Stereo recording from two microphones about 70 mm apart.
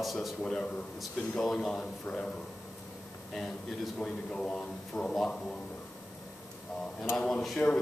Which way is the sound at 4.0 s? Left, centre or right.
Centre.